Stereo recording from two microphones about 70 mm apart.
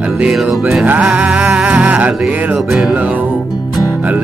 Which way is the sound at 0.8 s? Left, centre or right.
Centre.